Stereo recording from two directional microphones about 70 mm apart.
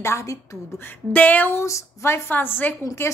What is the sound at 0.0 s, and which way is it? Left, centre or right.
Speech, left.